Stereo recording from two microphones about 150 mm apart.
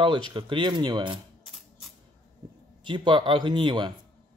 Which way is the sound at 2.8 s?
30° right (ahead or behind).